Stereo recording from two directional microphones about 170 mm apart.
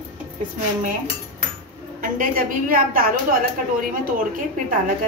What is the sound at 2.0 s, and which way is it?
A woman's voice, 55° right (ahead or behind).